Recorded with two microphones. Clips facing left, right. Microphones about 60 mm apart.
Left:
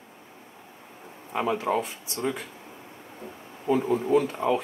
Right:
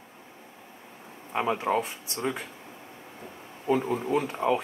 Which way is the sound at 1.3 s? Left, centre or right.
Centre.